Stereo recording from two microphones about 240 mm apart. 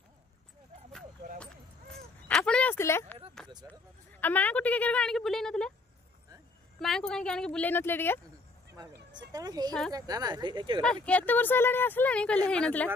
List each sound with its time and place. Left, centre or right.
2.2 s a sound: centre
4.2 s a woman's voice: centre
6.8 s a woman's voice: centre
8.7 s speech: centre
11.1 s a woman's voice: centre